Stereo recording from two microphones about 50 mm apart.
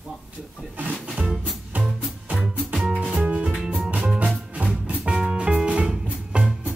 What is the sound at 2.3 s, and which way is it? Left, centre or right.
Music, right.